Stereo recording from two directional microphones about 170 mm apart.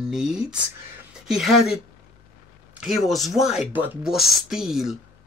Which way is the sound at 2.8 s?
Centre (ahead or behind).